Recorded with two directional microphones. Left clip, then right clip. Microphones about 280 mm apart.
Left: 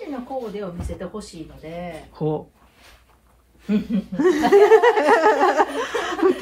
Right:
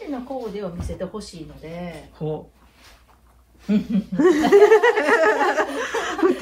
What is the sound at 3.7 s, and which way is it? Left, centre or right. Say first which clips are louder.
Snicker: right 1 dB; centre.